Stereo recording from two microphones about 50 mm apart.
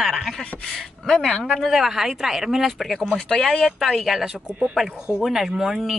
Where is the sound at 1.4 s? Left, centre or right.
Centre.